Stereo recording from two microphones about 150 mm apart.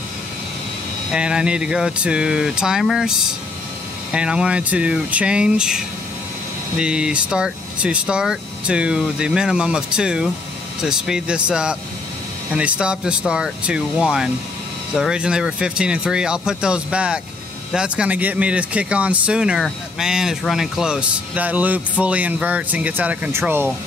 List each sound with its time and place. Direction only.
1.1 s speech: 5° right (ahead or behind)
6.8 s speech: 5° right (ahead or behind)